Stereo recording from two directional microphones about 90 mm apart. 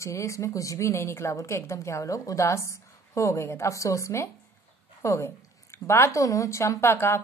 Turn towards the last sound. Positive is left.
turn(degrees=25)  # may be behind; listen again after turning